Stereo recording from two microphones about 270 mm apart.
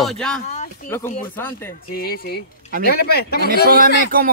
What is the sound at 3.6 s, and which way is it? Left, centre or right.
Speech, right.